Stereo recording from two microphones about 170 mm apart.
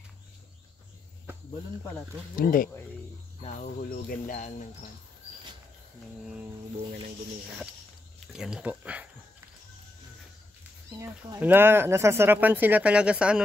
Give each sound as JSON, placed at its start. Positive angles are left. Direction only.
{"t": 2.3, "sound": "speech", "side_deg": 55}
{"t": 8.3, "sound": "speech", "side_deg": -5}
{"t": 11.0, "sound": "speech", "side_deg": -15}